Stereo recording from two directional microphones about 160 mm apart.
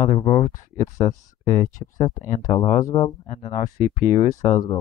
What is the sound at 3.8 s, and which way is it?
Speech, 50° left (ahead or behind).